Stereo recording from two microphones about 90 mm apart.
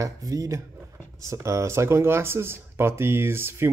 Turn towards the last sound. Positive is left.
turn(degrees=-25)  # may be behind; listen again after turning